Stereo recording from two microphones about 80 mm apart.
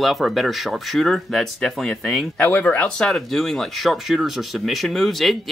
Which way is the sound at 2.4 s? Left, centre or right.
Left.